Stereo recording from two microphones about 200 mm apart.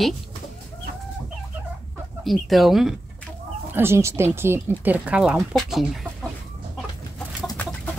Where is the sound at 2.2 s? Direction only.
Centre (ahead or behind).